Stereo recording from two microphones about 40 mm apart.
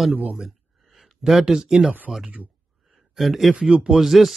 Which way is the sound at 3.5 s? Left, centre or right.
Right.